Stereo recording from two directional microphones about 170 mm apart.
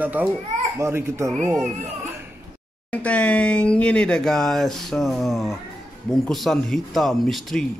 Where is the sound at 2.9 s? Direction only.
10° left (ahead or behind).